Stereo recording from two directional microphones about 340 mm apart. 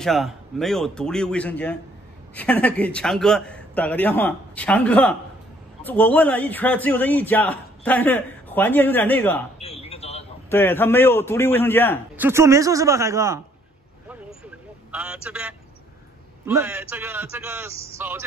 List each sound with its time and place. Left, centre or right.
0.0 s a man's voice: centre
9.6 s a sound: centre
10.5 s a man's voice: centre
12.2 s a man's voice: centre
14.9 s a man's voice: centre